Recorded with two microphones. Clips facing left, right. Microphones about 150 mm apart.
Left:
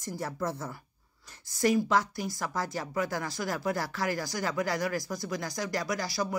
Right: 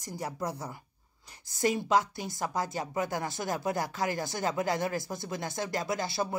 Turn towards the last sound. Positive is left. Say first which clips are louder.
# even
turn(degrees=-25)  # may be behind; listen again after turning